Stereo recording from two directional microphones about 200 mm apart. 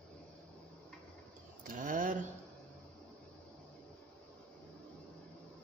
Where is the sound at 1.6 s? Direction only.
45° right (ahead or behind).